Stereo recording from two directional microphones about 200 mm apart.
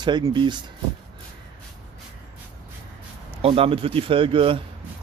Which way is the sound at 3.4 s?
30° right (ahead or behind).